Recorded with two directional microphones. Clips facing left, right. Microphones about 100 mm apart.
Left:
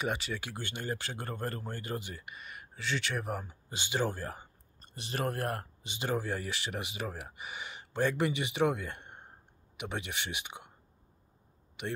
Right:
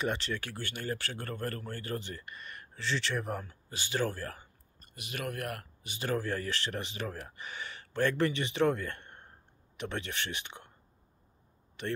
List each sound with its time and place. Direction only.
0.0 s speech: 10° left (ahead or behind)
3.4 s speech: 20° left (ahead or behind)
11.8 s speech: 15° left (ahead or behind)